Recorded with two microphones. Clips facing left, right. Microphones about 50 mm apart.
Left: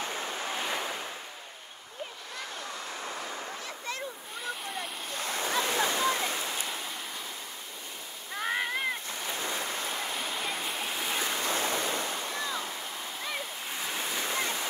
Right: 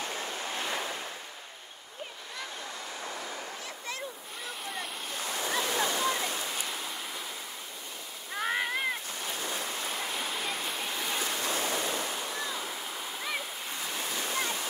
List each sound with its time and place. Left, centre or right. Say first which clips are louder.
0.0 s waves: left 1 dB; left
5.3 s waterfall: left 2 dB; left
8.4 s cat: even; centre
9.4 s rain: left 2 dB; left
10.2 s stream: even; centre
11.4 s waves: left 1 dB; left
13.2 s splash: even; centre
13.7 s waves: left 2 dB; centre